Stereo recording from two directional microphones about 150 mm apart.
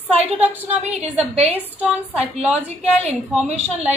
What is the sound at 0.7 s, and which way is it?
Speech, 45° right (ahead or behind).